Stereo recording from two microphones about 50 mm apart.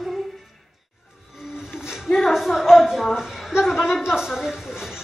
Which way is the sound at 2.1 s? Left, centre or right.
Centre.